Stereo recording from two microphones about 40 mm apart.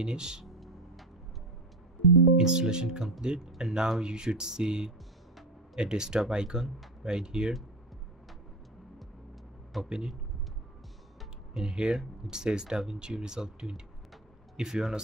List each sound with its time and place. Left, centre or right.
0.0 s speech: right
0.5 s music: centre
2.3 s speech: centre
9.8 s speech: centre
11.6 s speech: right